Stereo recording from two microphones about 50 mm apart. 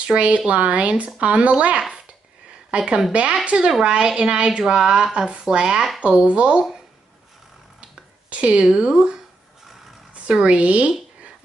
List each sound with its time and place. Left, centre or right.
0.0 s speech: right
1.8 s a woman's voice: centre
7.8 s a sound: right
8.6 s a woman's voice: centre